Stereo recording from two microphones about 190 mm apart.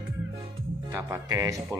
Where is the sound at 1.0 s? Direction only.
15° right (ahead or behind).